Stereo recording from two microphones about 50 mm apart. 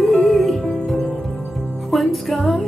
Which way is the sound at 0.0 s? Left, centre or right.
Centre.